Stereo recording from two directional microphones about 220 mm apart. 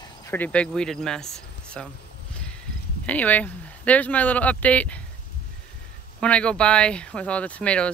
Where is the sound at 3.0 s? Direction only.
5° left (ahead or behind).